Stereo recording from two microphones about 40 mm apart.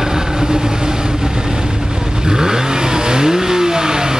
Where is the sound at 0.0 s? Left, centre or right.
Centre.